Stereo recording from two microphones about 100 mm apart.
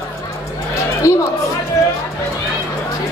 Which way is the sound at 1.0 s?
30° left (ahead or behind).